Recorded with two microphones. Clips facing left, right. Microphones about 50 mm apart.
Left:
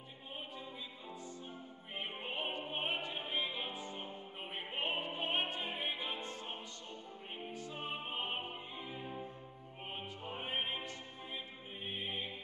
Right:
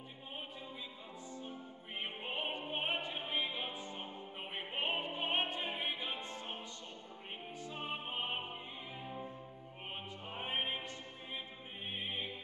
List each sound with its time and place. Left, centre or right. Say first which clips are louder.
2.0 s opera: even; centre
3.3 s music: even; centre
4.6 s opera: right 1 dB; centre
7.8 s opera: right 1 dB; centre
10.2 s opera: right 1 dB; centre
11.9 s music: even; centre